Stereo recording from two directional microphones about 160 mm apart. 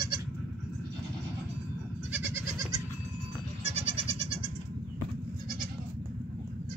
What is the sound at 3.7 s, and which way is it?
Goat, 40° right (ahead or behind).